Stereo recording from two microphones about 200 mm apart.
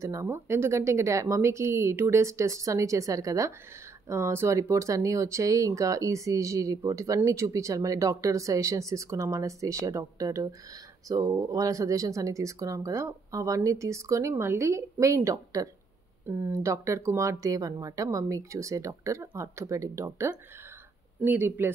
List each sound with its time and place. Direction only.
0.0 s speech: 15° right (ahead or behind)